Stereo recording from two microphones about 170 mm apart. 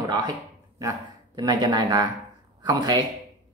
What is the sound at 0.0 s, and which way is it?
Speech, 20° right (ahead or behind).